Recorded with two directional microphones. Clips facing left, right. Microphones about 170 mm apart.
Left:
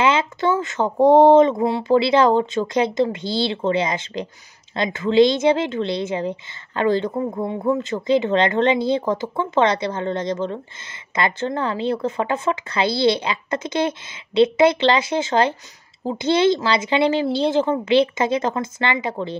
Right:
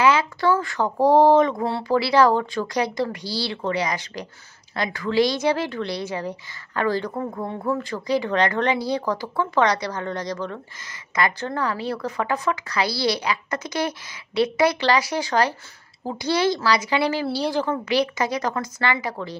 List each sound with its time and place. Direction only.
0.0 s a woman's voice: 25° left (ahead or behind)